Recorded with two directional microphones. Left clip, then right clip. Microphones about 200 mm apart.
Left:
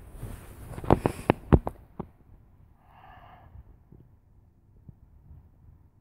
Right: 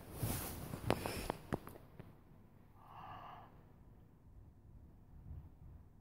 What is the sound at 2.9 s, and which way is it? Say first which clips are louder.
Gasp: left 1 dB; 10° left (ahead or behind).